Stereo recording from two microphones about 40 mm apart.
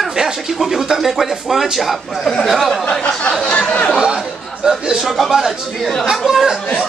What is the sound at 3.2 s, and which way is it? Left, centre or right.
Speech, left.